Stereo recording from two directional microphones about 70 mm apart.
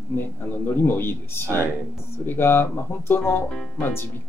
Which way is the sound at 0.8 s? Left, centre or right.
Left.